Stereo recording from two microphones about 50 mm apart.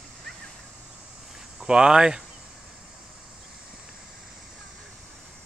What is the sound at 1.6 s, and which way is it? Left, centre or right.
Speech, centre.